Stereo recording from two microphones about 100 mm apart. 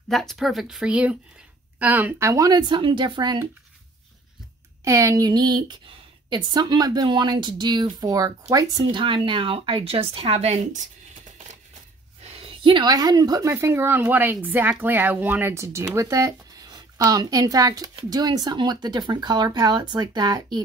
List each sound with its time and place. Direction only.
0.1 s speech: centre (ahead or behind); by 2.2 s 20° right (ahead or behind)
2.2 s a woman's voice: 35° right (ahead or behind)
2.8 s a woman's voice: 55° right (ahead or behind)
4.8 s a woman's voice: 35° right (ahead or behind)
8.9 s speech: 55° right (ahead or behind); by 10.5 s 80° right
12.2 s a sound: 85° right; by 12.8 s 70° right (ahead or behind)
12.8 s a woman's voice: 45° right (ahead or behind)